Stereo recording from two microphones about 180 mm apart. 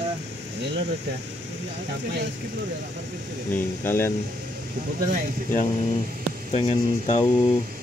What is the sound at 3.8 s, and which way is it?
Speech, 10° left (ahead or behind).